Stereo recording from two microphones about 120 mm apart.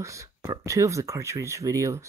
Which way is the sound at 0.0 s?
25° right (ahead or behind).